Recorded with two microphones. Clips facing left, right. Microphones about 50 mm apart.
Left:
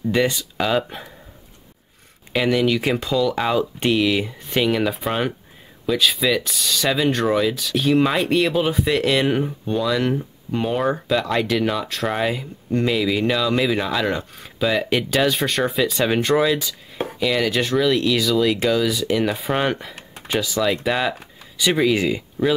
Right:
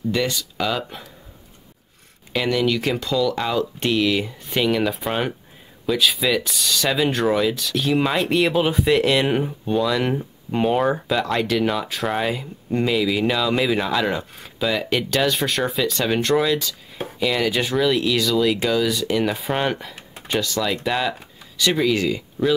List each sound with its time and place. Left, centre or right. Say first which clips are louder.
0.1 s speech: left 4 dB; left
2.3 s speech: left 2 dB; centre
10.0 s speech: left 1 dB; centre